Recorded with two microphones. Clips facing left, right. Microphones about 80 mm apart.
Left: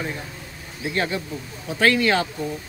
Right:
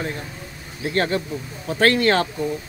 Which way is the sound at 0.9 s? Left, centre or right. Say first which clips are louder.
Right 4 dB; right.